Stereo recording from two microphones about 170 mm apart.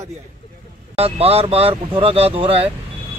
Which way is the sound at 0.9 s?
35° right (ahead or behind).